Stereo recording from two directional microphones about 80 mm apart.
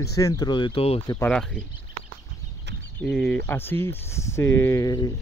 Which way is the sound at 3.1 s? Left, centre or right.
Centre.